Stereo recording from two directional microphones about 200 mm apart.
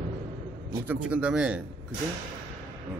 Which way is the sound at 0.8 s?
5° right (ahead or behind).